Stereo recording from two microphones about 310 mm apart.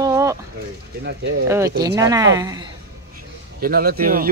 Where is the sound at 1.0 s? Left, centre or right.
Right.